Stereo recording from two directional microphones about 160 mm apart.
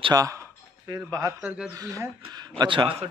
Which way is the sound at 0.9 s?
20° right (ahead or behind).